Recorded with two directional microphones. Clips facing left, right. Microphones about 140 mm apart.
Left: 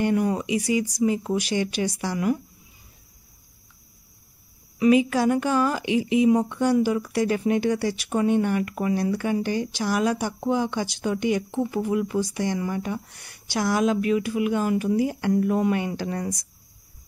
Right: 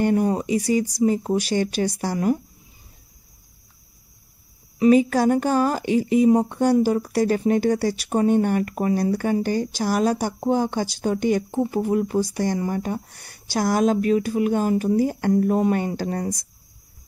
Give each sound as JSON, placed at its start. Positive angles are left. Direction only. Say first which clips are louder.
{"t": 0.0, "sound": "a woman's voice", "louder": "right 3 dB", "side_deg": -35}
{"t": 4.7, "sound": "a woman's voice", "louder": "right 3 dB", "side_deg": -35}